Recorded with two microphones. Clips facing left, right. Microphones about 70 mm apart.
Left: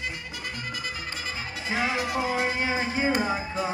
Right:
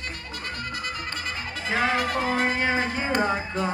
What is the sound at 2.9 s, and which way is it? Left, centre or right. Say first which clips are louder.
Music: left 1 dB; centre.